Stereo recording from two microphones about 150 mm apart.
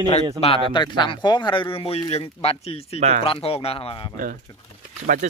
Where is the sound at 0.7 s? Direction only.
30° left (ahead or behind).